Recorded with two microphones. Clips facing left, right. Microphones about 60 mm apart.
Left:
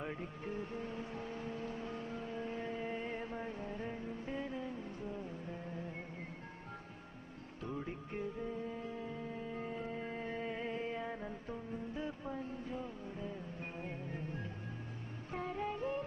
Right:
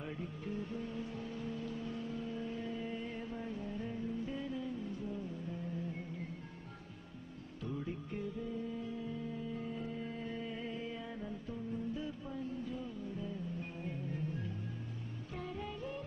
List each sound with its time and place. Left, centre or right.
0.0 s music: left
7.6 s music: left